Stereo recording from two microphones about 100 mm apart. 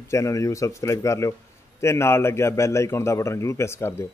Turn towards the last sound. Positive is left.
turn(degrees=25)  # may be behind; listen again after turning